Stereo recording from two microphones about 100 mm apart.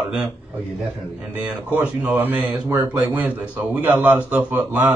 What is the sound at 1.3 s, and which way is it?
A man's voice, 15° right (ahead or behind).